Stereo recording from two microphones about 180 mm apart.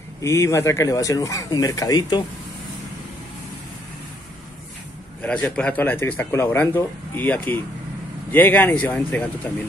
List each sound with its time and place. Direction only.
0.2 s speech: 15° left (ahead or behind)
5.2 s speech: 5° left (ahead or behind)